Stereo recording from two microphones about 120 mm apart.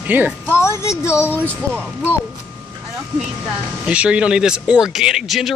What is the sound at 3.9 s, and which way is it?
Speech, 10° right (ahead or behind).